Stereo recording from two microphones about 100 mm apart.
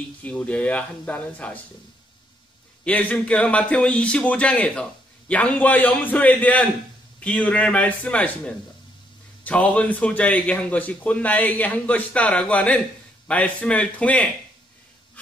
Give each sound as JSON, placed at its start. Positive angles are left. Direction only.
{"t": 0.2, "sound": "a man's voice", "side_deg": 15}
{"t": 2.8, "sound": "a man's voice", "side_deg": 15}